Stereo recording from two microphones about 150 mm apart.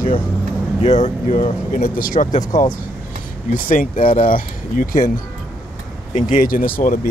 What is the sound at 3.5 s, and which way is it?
Speech, 65° left (ahead or behind).